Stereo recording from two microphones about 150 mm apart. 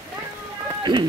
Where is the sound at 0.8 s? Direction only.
30° right (ahead or behind).